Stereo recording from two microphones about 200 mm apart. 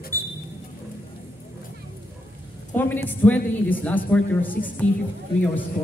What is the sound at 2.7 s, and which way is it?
Speech, 10° left (ahead or behind).